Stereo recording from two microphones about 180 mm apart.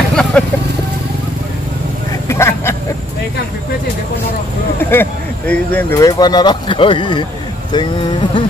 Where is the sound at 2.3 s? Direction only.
15° left (ahead or behind).